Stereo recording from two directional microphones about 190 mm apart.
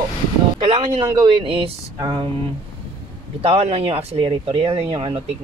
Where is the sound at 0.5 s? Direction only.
25° right (ahead or behind).